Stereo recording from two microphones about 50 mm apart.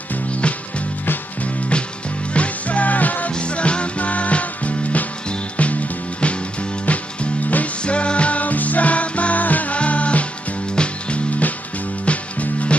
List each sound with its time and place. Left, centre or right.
1.4 s music: left
3.3 s music: left
6.9 s music: left